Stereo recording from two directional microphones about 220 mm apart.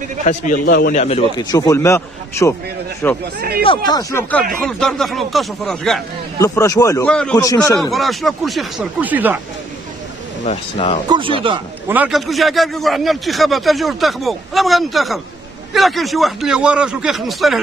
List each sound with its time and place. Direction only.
0.2 s a man's voice: 35° left (ahead or behind); by 3.2 s 10° left (ahead or behind)
3.3 s speech: 45° right (ahead or behind)
3.6 s a man's voice: 20° left (ahead or behind); by 6.0 s centre (ahead or behind)
6.4 s speech: 15° left (ahead or behind)
7.1 s a man's voice: 5° left (ahead or behind)
7.3 s speech: 15° left (ahead or behind)
7.9 s a man's voice: centre (ahead or behind)
10.4 s speech: 30° left (ahead or behind)
11.1 s speech: 25° right (ahead or behind)
11.9 s a man's voice: 5° right (ahead or behind)